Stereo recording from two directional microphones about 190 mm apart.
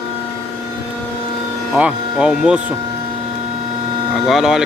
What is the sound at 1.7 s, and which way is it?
Speech, 5° right (ahead or behind).